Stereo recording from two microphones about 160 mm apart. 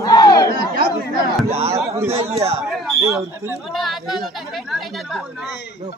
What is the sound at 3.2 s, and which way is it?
Speech, 20° right (ahead or behind).